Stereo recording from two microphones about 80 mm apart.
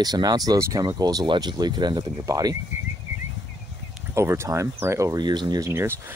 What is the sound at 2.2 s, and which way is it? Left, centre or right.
Speech, right.